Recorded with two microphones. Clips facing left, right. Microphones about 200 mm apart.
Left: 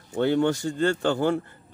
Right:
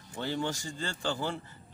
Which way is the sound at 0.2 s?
60° left (ahead or behind).